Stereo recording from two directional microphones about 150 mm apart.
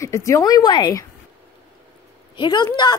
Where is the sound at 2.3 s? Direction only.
30° left (ahead or behind).